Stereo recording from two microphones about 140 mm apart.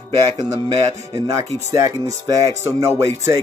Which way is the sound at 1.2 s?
25° right (ahead or behind).